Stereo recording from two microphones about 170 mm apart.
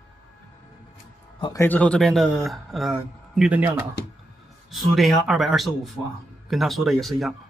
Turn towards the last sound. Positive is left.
turn(degrees=0)  # may be behind; listen again after turning